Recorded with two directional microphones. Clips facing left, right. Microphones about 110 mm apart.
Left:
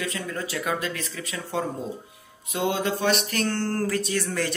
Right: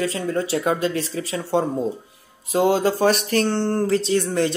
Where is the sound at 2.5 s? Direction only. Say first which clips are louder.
Right 7 dB; 35° right (ahead or behind).